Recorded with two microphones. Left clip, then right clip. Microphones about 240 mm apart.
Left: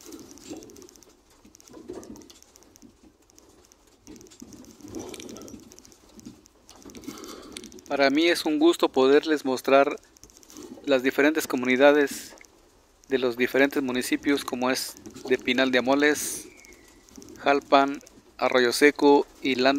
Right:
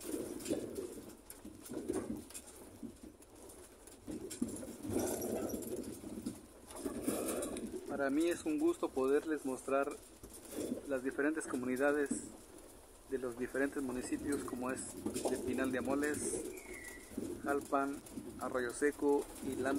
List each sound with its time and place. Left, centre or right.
7.9 s speech: left
13.1 s speech: left
17.5 s speech: left